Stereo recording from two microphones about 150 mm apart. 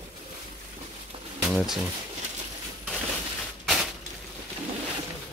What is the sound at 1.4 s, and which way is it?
Speech, centre (ahead or behind).